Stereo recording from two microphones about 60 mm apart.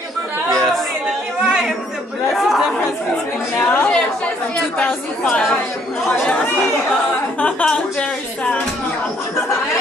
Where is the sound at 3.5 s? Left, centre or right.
Left.